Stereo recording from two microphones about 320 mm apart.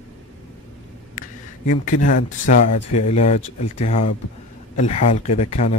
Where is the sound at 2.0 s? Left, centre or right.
Left.